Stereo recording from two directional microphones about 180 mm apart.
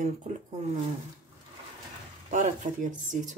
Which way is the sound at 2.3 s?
45° right (ahead or behind).